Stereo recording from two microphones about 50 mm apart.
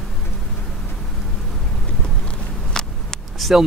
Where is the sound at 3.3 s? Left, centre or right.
Centre.